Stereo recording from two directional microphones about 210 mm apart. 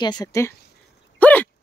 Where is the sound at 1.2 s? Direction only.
5° left (ahead or behind).